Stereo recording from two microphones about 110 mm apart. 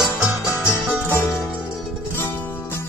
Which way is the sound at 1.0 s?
15° left (ahead or behind).